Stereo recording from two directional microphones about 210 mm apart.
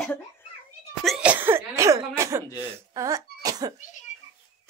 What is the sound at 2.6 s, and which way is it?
Speech, 15° right (ahead or behind).